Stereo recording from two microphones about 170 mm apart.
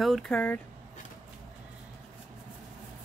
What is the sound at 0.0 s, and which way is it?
Speech, centre (ahead or behind).